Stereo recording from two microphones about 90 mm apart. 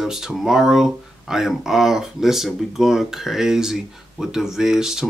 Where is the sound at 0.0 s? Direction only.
5° right (ahead or behind).